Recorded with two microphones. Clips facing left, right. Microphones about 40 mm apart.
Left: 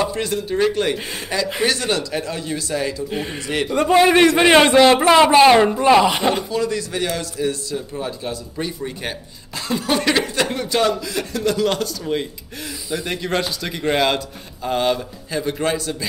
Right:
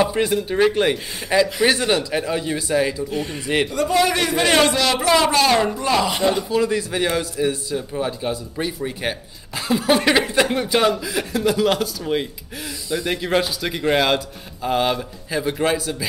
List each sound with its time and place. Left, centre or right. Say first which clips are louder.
0.0 s a man's voice: right 3 dB; centre
3.1 s a man's voice: right 1 dB; centre
6.5 s a man's voice: right 2 dB; centre